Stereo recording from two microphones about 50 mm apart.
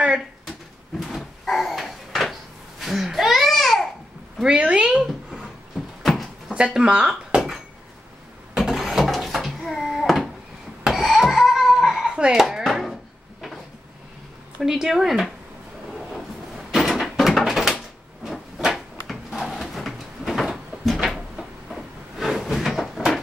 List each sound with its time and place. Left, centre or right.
1.0 s cupboard open or close: centre
2.8 s babbling: centre
4.5 s speech: right
5.0 s a sound: centre
6.5 s speech: centre
8.7 s a sound: centre
12.4 s chopping: centre
14.6 s speech: centre
15.9 s door: centre
20.4 s cupboard open or close: centre